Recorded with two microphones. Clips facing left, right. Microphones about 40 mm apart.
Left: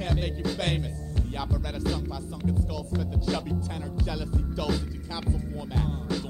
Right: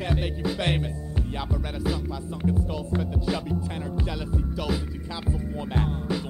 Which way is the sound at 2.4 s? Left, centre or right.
Right.